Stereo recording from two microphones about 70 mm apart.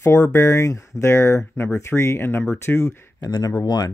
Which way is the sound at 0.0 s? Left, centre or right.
Left.